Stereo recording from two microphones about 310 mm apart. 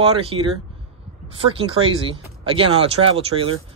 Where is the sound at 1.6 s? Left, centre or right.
Centre.